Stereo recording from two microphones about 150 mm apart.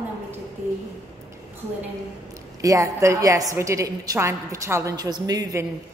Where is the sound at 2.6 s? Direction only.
20° right (ahead or behind).